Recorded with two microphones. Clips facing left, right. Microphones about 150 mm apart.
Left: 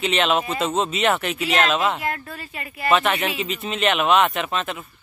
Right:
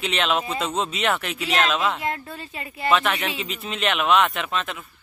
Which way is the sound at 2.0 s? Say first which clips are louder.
Even; 25° right (ahead or behind).